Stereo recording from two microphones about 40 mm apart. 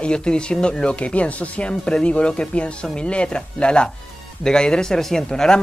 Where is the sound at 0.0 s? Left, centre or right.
Left.